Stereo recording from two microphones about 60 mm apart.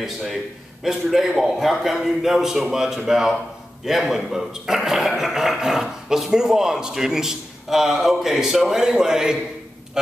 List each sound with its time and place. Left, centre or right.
0.0 s a man's voice: centre